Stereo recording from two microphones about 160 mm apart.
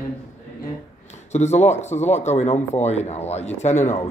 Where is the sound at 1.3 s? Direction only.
45° left (ahead or behind).